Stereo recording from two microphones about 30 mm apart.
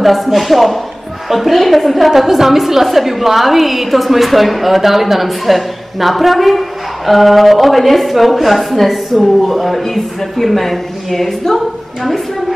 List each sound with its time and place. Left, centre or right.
0.0 s a woman's voice: centre